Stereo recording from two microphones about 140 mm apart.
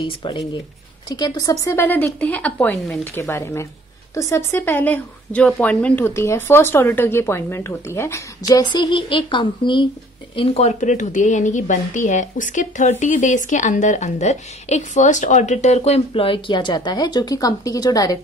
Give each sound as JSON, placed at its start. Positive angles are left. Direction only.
{"t": 0.0, "sound": "speech", "side_deg": 35}
{"t": 3.2, "sound": "a woman's voice", "side_deg": 20}